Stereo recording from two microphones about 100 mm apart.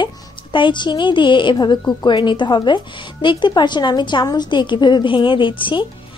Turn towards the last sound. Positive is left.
turn(degrees=55)  # may be behind; listen again after turning